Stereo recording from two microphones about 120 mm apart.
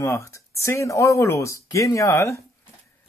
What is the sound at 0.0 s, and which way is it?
Speech, 25° left (ahead or behind).